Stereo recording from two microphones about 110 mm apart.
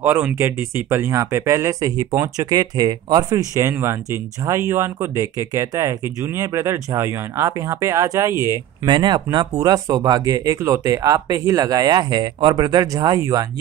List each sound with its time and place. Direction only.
0.0 s speech: 20° right (ahead or behind)
8.8 s speech: 45° right (ahead or behind)